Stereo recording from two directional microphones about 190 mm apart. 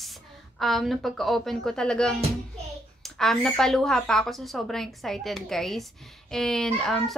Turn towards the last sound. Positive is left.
turn(degrees=0)  # may be behind; listen again after turning